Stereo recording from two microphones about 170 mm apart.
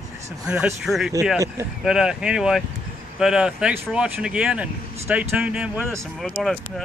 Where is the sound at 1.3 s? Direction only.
20° right (ahead or behind).